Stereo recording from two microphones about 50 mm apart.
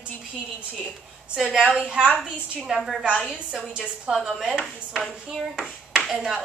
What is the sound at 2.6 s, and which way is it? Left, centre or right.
Speech, centre.